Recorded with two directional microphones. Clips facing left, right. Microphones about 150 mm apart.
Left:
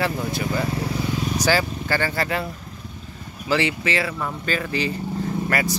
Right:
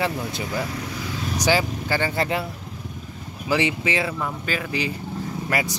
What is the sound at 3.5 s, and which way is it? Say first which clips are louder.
Speech: even; 15° right (ahead or behind).